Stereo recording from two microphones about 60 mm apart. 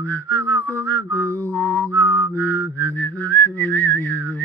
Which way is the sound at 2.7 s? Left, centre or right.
Left.